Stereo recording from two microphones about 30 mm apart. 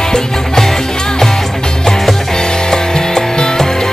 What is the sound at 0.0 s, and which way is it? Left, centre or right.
Music, centre.